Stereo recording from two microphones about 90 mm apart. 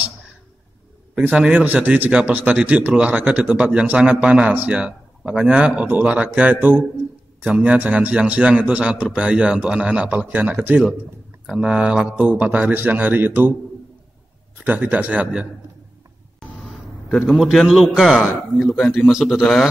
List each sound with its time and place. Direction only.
1.3 s a man's voice: 15° right (ahead or behind)
11.4 s a man's voice: 10° right (ahead or behind)
14.6 s a man's voice: 20° right (ahead or behind)
16.3 s a sound: centre (ahead or behind)
18.5 s a man's voice: centre (ahead or behind)